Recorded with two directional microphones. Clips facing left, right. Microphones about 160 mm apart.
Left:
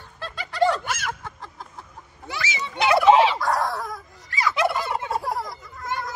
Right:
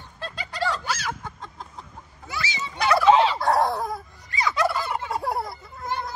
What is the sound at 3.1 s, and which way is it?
Turkey, centre (ahead or behind).